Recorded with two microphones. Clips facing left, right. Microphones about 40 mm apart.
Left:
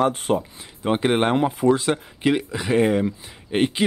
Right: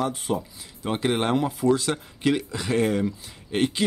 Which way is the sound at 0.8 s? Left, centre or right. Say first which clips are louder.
Left 5 dB; left.